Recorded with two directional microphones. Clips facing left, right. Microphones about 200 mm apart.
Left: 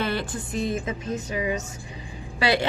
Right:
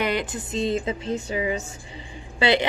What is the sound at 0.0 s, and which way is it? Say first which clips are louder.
A woman's voice: right 2 dB; 20° right (ahead or behind).